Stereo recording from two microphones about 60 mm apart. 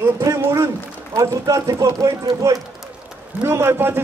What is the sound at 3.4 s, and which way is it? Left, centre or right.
Speech, right.